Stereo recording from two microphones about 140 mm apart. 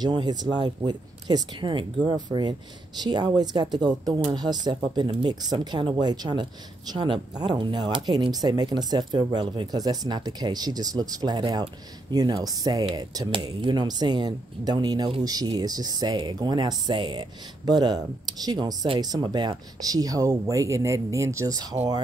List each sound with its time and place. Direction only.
0.0 s speech: 30° right (ahead or behind)